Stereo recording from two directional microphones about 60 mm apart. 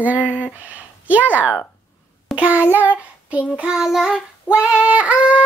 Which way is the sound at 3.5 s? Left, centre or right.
Centre.